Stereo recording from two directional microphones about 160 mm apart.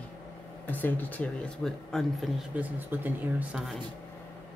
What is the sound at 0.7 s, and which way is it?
Speech, 10° left (ahead or behind).